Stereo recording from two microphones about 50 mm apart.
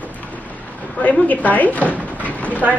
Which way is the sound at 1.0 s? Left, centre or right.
Left.